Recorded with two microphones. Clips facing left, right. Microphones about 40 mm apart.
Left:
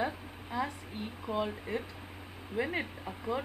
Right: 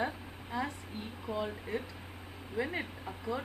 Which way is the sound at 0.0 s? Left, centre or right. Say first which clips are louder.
Left 1 dB; centre.